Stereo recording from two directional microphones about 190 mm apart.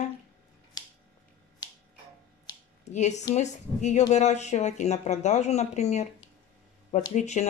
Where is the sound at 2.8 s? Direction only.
40° left (ahead or behind).